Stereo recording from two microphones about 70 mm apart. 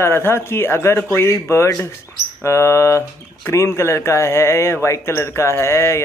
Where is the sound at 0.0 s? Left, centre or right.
Left.